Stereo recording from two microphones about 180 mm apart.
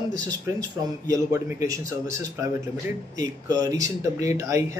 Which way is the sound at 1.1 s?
20° right (ahead or behind).